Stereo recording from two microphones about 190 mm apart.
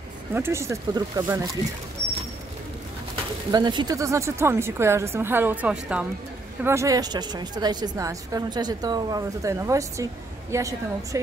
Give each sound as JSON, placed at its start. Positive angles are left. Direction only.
{"t": 0.3, "sound": "a woman's voice", "side_deg": -15}
{"t": 3.5, "sound": "a woman's voice", "side_deg": -20}